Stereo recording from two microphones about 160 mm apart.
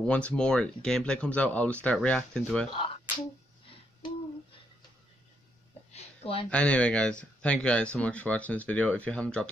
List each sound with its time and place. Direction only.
0.0 s speech: 5° left (ahead or behind)
5.9 s a sound: 35° left (ahead or behind)
6.5 s speech: 5° left (ahead or behind)